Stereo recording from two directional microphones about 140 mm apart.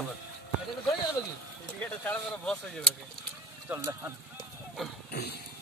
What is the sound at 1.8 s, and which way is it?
Speech, 10° left (ahead or behind).